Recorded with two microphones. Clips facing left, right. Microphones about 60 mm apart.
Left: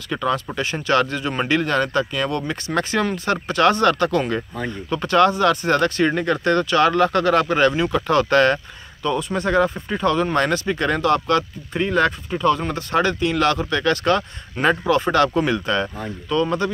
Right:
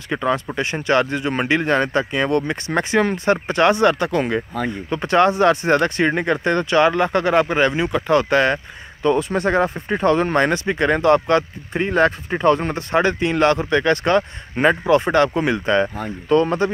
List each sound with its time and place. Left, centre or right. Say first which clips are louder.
0.1 s speech: right 2 dB; right
9.0 s speech: right 4 dB; right
16.0 s speech: right 4 dB; right